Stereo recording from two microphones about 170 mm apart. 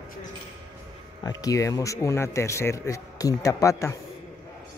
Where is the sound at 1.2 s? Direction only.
20° left (ahead or behind).